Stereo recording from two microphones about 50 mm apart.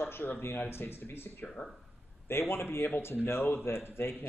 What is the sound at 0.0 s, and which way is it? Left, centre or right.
Speech, left.